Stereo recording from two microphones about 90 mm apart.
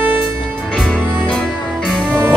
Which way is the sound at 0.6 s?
10° left (ahead or behind).